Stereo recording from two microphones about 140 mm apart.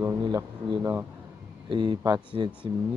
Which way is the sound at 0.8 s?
15° right (ahead or behind).